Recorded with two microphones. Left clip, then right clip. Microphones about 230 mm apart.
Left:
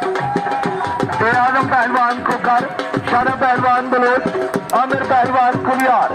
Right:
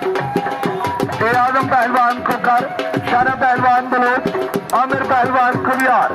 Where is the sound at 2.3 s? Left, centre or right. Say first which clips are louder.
Even; right.